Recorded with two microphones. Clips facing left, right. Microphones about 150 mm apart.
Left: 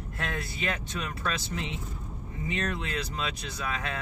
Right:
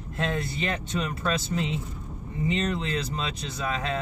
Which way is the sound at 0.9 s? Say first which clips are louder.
Right 5 dB; 30° right (ahead or behind).